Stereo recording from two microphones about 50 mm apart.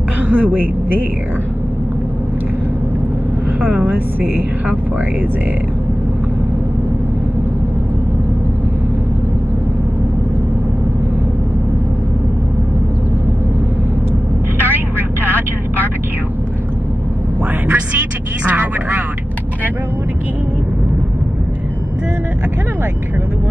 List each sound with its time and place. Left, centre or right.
0.3 s speech: right
3.6 s speech: right
14.6 s vehicle: right
18.4 s a sound: right